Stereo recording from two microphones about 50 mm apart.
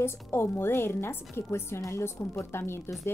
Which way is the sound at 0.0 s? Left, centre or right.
Left.